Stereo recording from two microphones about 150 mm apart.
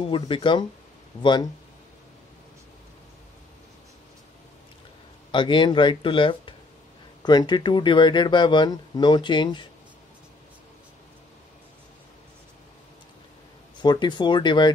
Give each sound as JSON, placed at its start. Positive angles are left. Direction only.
{"t": 0.0, "sound": "speech", "side_deg": 35}
{"t": 5.3, "sound": "speech", "side_deg": 30}
{"t": 13.7, "sound": "speech", "side_deg": 30}